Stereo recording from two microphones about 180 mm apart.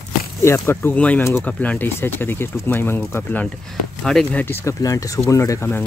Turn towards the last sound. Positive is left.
turn(degrees=15)  # may be behind; listen again after turning